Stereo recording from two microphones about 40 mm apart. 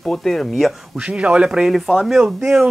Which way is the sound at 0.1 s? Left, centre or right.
Centre.